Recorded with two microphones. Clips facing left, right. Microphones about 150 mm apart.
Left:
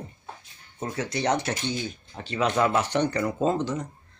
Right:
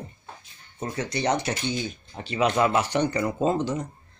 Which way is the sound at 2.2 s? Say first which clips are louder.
Right 1 dB; 15° right (ahead or behind).